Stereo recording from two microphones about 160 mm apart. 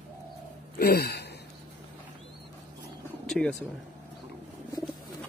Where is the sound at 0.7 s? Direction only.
75° left (ahead or behind).